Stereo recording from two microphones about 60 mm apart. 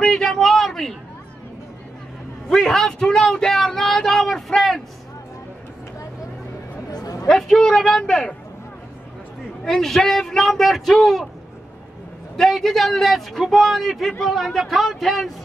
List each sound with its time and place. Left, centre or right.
0.1 s a sound: centre
2.5 s a sound: centre
6.9 s chatter: left
7.2 s a man's voice: centre
9.7 s a man's voice: centre
12.4 s a man's voice: centre